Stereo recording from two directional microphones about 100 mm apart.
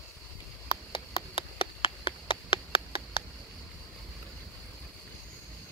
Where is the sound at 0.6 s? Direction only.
60° left (ahead or behind).